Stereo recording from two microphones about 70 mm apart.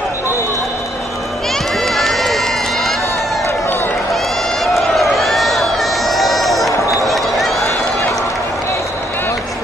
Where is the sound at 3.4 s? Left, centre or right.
Left.